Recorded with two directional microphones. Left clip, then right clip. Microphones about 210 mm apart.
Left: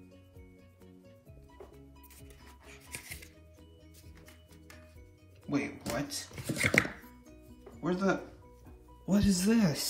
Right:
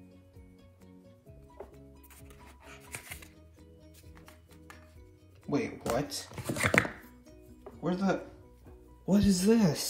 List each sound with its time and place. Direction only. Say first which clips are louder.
5.5 s speech: right 3 dB; 20° right (ahead or behind)
7.8 s speech: even; 10° right (ahead or behind)